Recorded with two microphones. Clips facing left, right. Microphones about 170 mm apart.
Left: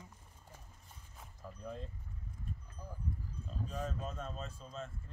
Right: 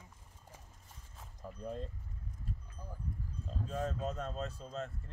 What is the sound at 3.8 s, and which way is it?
Speech, 40° right (ahead or behind).